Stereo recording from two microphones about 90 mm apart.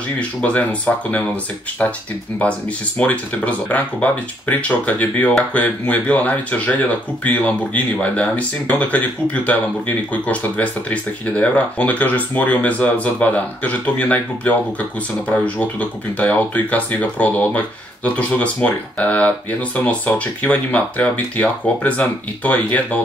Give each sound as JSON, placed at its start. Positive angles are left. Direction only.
{"t": 0.4, "sound": "speech", "side_deg": 15}